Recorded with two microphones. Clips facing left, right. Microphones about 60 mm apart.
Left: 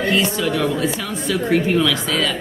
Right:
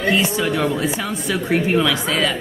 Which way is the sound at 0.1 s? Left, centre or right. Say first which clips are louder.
Right 2 dB; centre.